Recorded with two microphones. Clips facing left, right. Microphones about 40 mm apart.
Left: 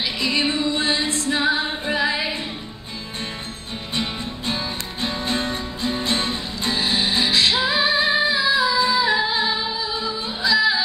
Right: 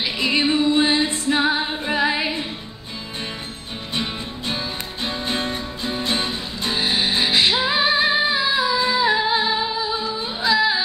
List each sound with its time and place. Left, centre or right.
0.0 s music: right
1.9 s singing: right
3.9 s music: centre
5.2 s music: right
8.7 s music: right